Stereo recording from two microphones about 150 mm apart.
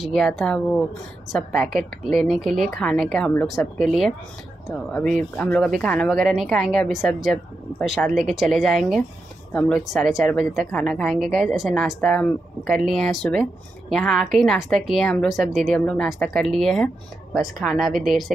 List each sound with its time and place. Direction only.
0.0 s a woman's voice: centre (ahead or behind)